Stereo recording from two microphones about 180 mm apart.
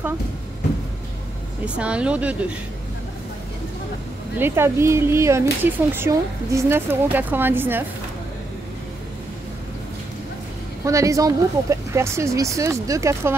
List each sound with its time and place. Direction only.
1.8 s speech: 5° right (ahead or behind)
4.4 s speech: 15° right (ahead or behind)
10.9 s speech: 15° right (ahead or behind)